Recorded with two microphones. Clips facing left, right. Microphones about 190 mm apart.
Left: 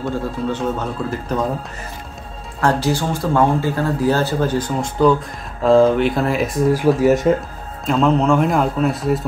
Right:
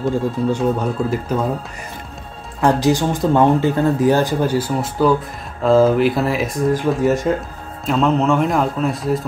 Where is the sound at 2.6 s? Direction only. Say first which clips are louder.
Right 3 dB; 15° right (ahead or behind).